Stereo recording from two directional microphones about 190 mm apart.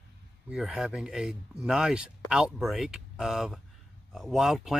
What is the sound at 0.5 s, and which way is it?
Speech, 5° right (ahead or behind).